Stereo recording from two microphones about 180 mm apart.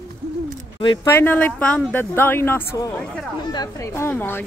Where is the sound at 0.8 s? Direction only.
25° left (ahead or behind).